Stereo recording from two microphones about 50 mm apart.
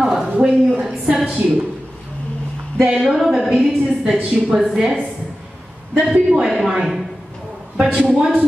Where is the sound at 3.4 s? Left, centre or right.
Centre.